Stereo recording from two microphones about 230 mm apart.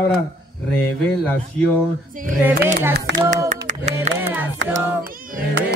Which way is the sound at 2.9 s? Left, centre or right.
Right.